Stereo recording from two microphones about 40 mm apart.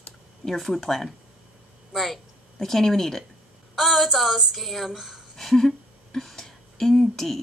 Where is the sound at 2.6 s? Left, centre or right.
Centre.